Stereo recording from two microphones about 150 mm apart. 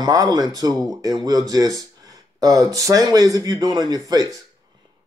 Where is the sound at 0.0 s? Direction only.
25° right (ahead or behind).